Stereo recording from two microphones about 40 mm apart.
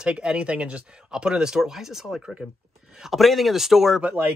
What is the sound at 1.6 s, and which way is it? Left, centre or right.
Speech, centre.